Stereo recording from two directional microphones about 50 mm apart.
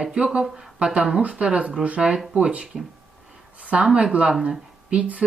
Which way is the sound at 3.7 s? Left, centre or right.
Right.